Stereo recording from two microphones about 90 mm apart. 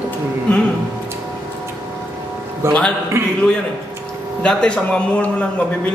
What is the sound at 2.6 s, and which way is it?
Speech, 30° right (ahead or behind).